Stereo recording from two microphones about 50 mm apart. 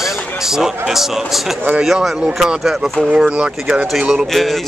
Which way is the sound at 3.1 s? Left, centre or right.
Right.